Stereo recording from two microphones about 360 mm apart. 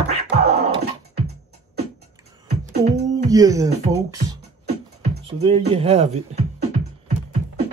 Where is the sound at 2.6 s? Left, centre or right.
Centre.